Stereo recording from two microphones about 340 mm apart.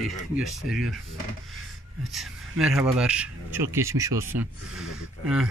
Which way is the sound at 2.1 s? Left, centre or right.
Centre.